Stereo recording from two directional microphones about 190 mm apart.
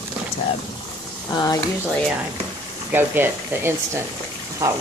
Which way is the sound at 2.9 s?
10° right (ahead or behind).